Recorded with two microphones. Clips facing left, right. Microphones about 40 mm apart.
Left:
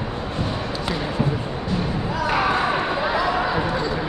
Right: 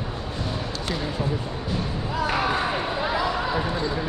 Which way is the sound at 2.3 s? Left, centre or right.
Centre.